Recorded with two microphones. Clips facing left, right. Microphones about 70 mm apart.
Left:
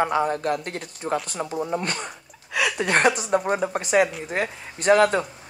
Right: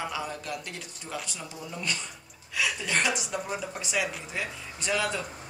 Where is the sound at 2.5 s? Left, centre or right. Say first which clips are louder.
Left 7 dB; left.